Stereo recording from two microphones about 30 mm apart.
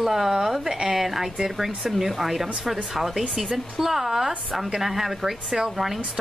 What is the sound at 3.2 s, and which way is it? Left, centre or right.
Speech, right.